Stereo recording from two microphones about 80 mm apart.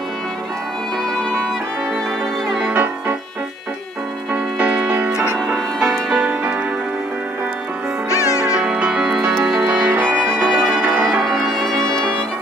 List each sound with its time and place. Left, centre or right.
2.7 s music: right
4.3 s music: centre
5.1 s music: centre
8.1 s music: left
8.5 s music: centre
9.6 s music: right
11.2 s music: centre